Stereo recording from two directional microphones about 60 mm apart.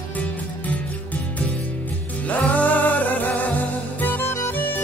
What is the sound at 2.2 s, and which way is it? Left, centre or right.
Music, left.